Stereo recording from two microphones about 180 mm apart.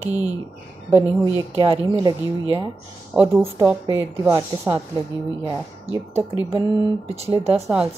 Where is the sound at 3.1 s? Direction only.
15° right (ahead or behind).